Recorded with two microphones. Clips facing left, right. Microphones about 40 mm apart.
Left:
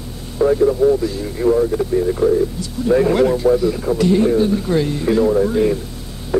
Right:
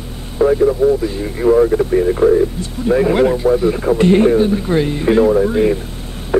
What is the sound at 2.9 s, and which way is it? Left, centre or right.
Speech, centre.